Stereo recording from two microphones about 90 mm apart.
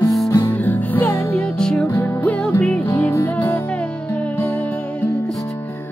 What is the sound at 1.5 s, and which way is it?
Music, 10° left (ahead or behind).